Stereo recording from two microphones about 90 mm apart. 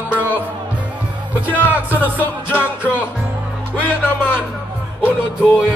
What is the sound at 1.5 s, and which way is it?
Music, 20° right (ahead or behind).